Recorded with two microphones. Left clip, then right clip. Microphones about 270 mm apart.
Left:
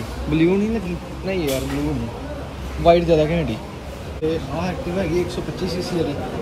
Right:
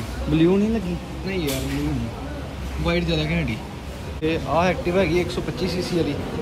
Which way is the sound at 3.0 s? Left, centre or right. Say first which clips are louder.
Left 7 dB; centre.